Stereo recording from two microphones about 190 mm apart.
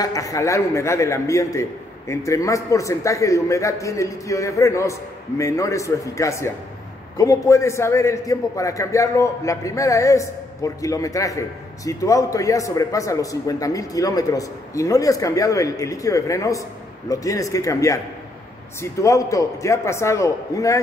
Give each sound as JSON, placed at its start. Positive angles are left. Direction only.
{"t": 0.0, "sound": "a man's voice", "side_deg": 20}